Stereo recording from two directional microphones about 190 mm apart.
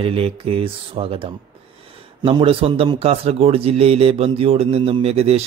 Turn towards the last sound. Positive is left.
turn(degrees=-30)  # may be behind; listen again after turning